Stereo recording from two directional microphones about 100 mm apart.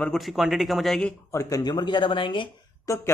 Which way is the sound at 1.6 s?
45° left (ahead or behind).